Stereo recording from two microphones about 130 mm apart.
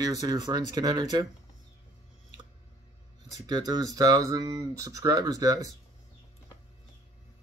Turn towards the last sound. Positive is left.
turn(degrees=-25)  # may be behind; listen again after turning